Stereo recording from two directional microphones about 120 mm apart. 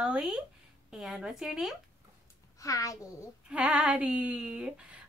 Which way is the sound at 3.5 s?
10° right (ahead or behind).